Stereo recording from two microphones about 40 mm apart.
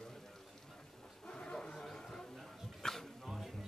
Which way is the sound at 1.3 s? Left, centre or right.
Left.